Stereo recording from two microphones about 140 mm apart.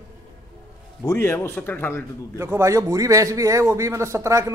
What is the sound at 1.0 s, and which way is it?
A man's voice, 20° left (ahead or behind).